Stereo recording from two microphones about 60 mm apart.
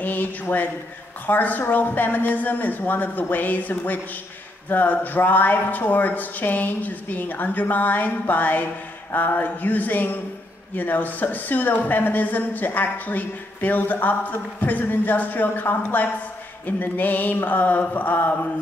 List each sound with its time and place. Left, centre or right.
0.0 s speech: left